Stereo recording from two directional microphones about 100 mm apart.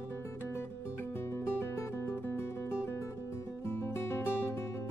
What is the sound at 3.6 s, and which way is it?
Music, 25° left (ahead or behind).